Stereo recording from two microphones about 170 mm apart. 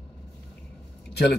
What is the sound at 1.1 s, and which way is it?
Keys jangling, 70° left (ahead or behind).